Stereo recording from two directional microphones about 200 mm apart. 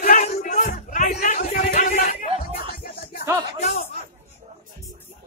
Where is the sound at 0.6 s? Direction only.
40° left (ahead or behind).